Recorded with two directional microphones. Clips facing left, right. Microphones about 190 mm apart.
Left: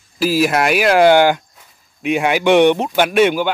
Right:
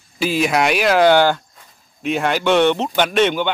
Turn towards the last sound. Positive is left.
turn(degrees=5)  # may be behind; listen again after turning